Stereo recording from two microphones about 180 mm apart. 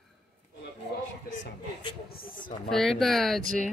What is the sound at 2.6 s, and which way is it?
Speech, centre (ahead or behind).